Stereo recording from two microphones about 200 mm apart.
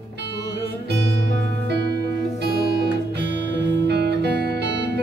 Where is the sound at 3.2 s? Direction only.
60° right (ahead or behind).